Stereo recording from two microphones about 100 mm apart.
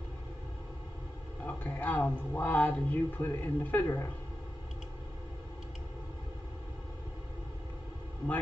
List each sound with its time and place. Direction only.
1.4 s a man's voice: 15° left (ahead or behind)